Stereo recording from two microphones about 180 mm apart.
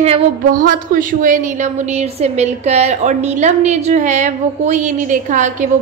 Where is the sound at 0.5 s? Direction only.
50° right (ahead or behind).